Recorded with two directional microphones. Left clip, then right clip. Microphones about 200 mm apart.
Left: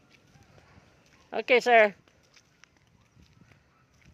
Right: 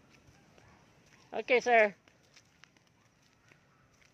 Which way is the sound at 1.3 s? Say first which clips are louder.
Left 5 dB; 25° left (ahead or behind).